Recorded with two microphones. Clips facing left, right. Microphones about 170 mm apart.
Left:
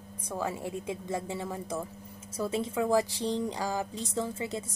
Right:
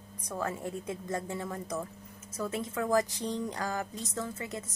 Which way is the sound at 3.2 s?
30° left (ahead or behind).